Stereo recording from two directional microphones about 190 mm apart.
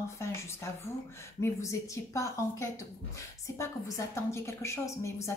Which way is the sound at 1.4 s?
15° left (ahead or behind).